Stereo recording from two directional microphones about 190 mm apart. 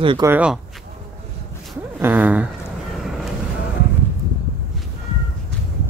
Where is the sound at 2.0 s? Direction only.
10° right (ahead or behind).